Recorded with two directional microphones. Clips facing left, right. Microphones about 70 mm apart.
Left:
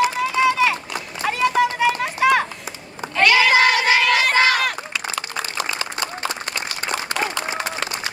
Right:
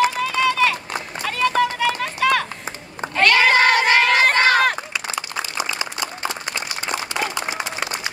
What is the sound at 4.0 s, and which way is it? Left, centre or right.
Crowd, right.